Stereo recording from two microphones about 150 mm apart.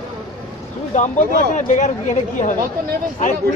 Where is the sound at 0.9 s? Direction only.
55° left (ahead or behind).